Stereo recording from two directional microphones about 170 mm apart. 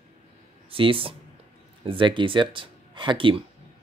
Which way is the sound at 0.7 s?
30° right (ahead or behind).